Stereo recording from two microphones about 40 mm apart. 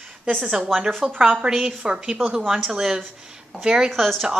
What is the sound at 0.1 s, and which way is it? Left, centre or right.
Speech, centre.